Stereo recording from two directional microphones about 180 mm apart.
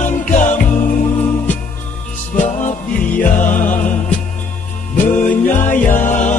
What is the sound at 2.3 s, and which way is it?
Music, 45° left (ahead or behind).